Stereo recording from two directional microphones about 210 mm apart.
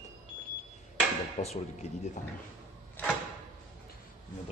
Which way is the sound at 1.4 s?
30° left (ahead or behind).